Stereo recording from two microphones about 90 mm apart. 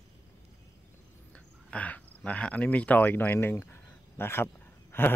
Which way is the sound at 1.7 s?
15° left (ahead or behind).